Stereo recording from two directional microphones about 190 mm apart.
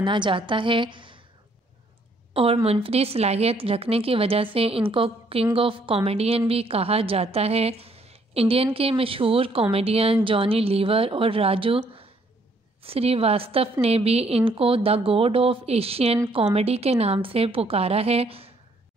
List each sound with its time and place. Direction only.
0.0 s speech: 25° right (ahead or behind)
2.3 s a woman's voice: 30° right (ahead or behind)
12.8 s a woman's voice: 30° right (ahead or behind)